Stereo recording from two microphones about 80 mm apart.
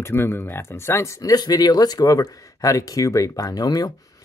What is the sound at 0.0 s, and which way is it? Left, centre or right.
Speech, left.